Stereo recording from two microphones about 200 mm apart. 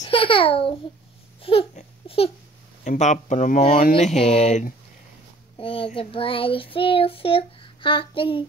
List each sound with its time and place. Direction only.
0.0 s a child's voice: 25° left (ahead or behind)
1.4 s a sound: 30° left (ahead or behind)
2.8 s speech: 35° left (ahead or behind)
3.9 s speech: 30° left (ahead or behind)
5.6 s child singing: 25° left (ahead or behind)